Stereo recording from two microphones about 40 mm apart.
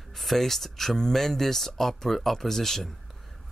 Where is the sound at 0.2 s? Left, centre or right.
Centre.